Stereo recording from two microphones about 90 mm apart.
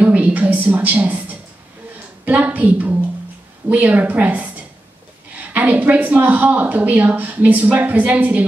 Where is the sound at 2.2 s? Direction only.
15° right (ahead or behind).